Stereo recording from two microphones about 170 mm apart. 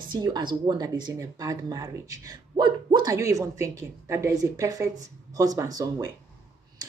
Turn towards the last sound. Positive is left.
turn(degrees=-20)  # may be behind; listen again after turning